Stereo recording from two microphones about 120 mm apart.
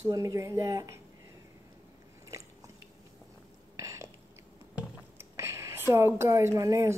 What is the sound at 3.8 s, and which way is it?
Burping, 25° right (ahead or behind).